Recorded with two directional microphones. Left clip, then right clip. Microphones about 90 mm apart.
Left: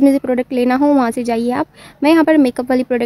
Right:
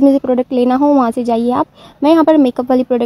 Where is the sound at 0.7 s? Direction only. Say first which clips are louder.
Right 2 dB; centre (ahead or behind).